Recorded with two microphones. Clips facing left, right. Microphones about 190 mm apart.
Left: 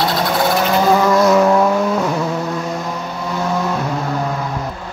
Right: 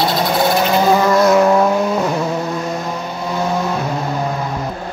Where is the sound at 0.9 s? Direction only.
5° right (ahead or behind).